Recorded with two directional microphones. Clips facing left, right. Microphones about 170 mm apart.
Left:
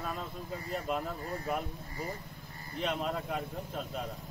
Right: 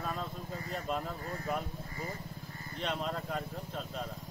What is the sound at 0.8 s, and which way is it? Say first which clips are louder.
Speech: left 1 dB; 5° left (ahead or behind).